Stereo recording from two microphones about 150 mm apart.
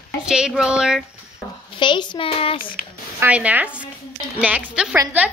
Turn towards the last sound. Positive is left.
turn(degrees=-5)  # may be behind; listen again after turning